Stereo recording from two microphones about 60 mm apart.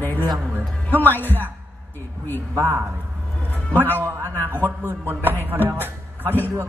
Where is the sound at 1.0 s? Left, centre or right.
Left.